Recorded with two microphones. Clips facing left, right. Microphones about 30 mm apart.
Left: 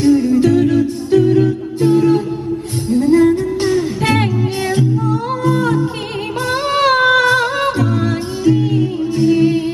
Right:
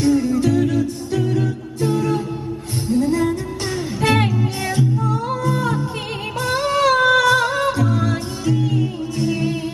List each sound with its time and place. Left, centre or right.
0.1 s music: left
6.5 s music: left
7.8 s music: left